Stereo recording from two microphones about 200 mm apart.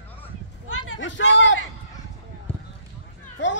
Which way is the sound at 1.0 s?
65° left (ahead or behind).